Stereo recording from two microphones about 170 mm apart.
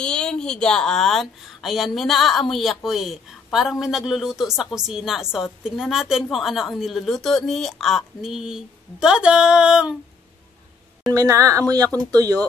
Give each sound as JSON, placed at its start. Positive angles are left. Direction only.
{"t": 0.0, "sound": "a woman's voice", "side_deg": 5}
{"t": 11.1, "sound": "speech", "side_deg": -20}